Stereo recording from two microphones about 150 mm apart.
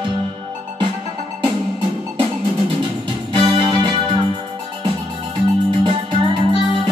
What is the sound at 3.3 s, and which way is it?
Music, 35° right (ahead or behind).